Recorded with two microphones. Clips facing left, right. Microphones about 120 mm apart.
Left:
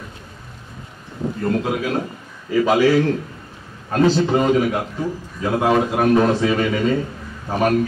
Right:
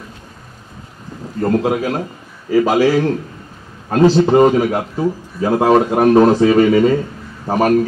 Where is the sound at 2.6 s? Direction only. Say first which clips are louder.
Even; 35° right (ahead or behind).